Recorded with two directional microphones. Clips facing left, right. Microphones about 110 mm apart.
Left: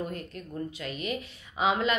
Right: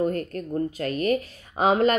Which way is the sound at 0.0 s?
45° right (ahead or behind).